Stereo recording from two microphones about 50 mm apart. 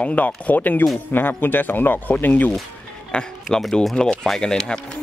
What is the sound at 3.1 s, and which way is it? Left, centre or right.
Speech, left.